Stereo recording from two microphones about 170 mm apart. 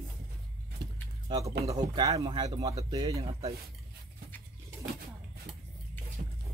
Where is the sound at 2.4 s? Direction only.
20° right (ahead or behind).